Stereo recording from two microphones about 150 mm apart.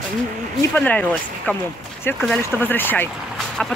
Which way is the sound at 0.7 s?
10° left (ahead or behind).